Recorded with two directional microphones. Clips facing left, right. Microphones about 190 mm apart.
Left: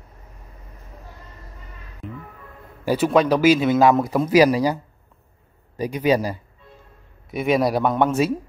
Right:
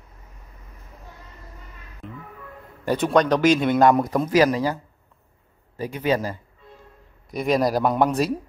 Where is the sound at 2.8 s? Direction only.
5° left (ahead or behind).